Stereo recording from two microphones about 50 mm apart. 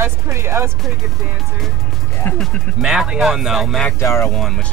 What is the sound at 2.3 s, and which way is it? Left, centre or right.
Speech, left.